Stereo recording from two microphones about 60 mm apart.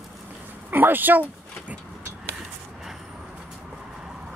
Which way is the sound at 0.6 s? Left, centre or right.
Right.